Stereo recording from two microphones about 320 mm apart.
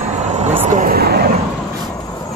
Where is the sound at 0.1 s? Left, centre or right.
Right.